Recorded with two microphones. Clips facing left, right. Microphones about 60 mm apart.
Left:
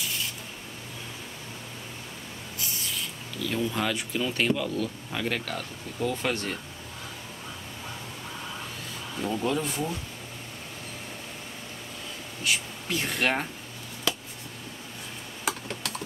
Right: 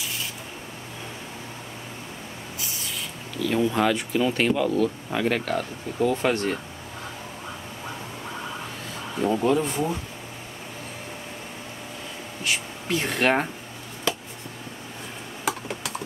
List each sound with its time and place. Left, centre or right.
0.0 s a sound: centre
2.6 s a sound: centre
3.4 s speech: centre
9.1 s speech: centre
12.4 s speech: centre
15.4 s computer keyboard: centre